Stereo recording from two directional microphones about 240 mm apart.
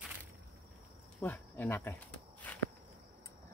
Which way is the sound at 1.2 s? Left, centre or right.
Centre.